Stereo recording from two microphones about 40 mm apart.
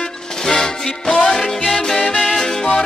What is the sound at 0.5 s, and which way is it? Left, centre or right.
Music, centre.